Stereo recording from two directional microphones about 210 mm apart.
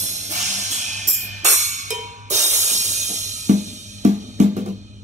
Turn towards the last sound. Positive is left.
turn(degrees=-35)  # may be behind; listen again after turning